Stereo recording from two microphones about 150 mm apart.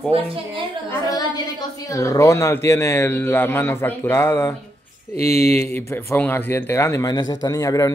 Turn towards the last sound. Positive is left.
turn(degrees=25)  # may be behind; listen again after turning